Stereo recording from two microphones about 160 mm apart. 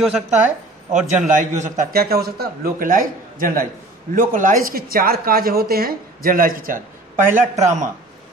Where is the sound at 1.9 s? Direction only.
75° right (ahead or behind); by 7.8 s 50° right (ahead or behind).